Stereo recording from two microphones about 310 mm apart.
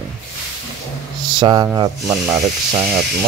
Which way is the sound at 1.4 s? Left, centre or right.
Centre.